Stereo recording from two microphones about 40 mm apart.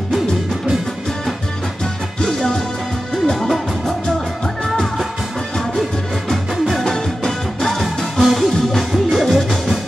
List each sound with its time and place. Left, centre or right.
2.2 s music: centre
6.8 s music: centre
7.8 s music: centre